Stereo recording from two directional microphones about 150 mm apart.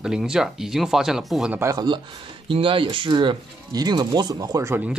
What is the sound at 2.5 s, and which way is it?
Speech, 35° right (ahead or behind).